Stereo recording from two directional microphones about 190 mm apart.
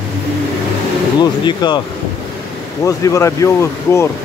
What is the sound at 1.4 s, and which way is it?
Speech, 25° left (ahead or behind).